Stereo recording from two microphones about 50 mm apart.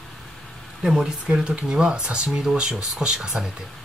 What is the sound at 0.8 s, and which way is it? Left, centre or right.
Speech, centre.